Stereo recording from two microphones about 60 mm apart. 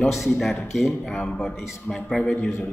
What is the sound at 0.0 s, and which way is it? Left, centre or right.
Speech, centre.